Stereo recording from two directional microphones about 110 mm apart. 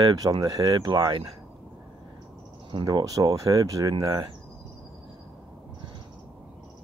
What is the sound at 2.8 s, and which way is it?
Speech, 35° right (ahead or behind).